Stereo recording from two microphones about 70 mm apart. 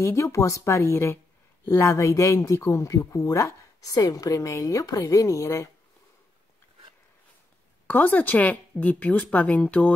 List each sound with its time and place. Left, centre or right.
0.0 s a woman's voice: left
7.8 s speech: left